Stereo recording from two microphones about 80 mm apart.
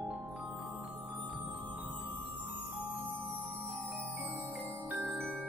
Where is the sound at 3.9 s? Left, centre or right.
Right.